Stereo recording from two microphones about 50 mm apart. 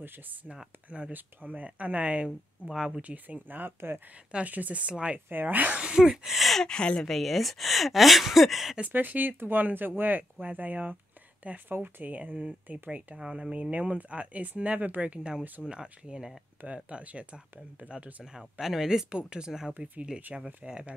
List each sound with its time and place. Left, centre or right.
0.0 s speech: right
0.8 s speech: right
4.5 s speech: right
5.3 s speech: right
5.8 s speech: centre
6.6 s a woman's voice: centre
7.0 s speech: centre
8.8 s speech: right
13.1 s speech: centre
15.6 s speech: centre
18.4 s speech: centre; by 20.9 s right